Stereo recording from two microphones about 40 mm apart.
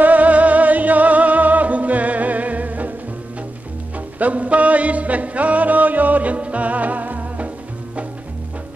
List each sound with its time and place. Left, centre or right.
0.0 s music: right
4.2 s music: right